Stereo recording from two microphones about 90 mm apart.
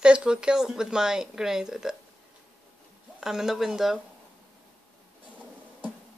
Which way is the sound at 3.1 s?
5° right (ahead or behind).